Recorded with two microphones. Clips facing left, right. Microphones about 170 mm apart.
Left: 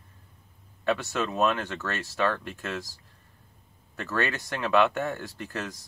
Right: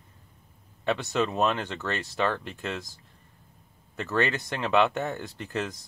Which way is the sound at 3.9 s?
20° right (ahead or behind).